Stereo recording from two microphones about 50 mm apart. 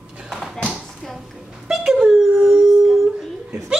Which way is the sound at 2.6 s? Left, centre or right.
Centre.